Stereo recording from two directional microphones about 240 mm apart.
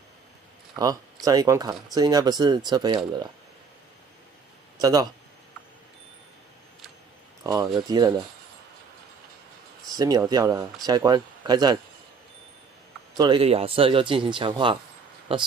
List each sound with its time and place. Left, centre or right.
1.2 s speech: centre
4.7 s speech: centre
7.4 s speech: centre
9.9 s speech: centre
13.1 s speech: centre